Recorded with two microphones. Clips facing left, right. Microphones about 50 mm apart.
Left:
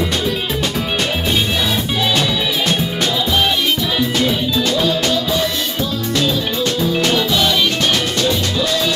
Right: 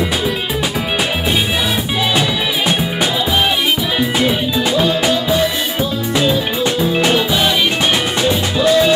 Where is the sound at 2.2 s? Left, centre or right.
Centre.